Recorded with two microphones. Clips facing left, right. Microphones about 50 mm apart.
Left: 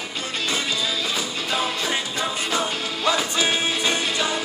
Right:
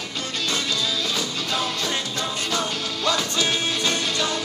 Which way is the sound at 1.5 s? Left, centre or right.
Left.